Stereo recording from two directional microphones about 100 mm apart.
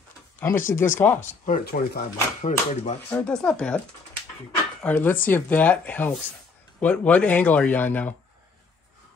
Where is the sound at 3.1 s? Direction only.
10° left (ahead or behind).